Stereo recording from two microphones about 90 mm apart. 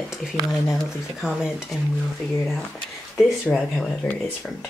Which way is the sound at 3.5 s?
5° left (ahead or behind).